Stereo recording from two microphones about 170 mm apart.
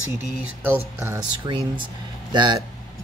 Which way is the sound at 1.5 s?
25° right (ahead or behind).